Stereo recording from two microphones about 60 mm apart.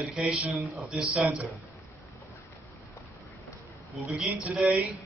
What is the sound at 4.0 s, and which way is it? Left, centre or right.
Speech, centre.